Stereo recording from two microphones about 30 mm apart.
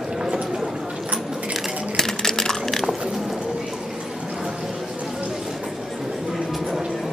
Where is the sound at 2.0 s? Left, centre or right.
Centre.